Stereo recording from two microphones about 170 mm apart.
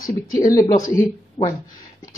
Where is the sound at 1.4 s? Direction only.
35° left (ahead or behind).